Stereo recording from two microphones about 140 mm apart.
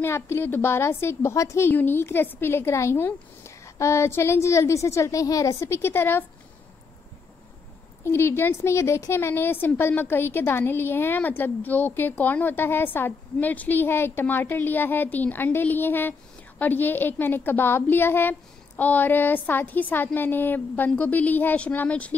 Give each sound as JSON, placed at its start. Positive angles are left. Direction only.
{"t": 0.0, "sound": "a woman's voice", "side_deg": 15}
{"t": 8.0, "sound": "a woman's voice", "side_deg": 15}